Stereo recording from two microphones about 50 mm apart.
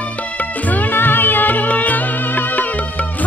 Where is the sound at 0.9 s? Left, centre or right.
Left.